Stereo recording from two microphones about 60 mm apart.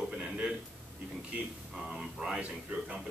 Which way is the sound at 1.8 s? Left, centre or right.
Centre.